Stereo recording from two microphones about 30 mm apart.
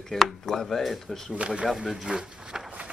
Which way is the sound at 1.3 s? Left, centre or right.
Right.